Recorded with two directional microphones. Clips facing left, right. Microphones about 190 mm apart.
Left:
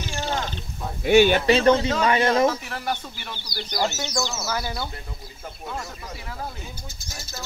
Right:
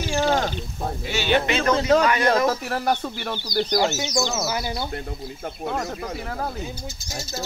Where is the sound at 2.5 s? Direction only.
45° right (ahead or behind).